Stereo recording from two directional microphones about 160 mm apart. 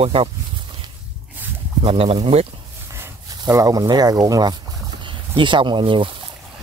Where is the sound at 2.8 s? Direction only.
15° right (ahead or behind).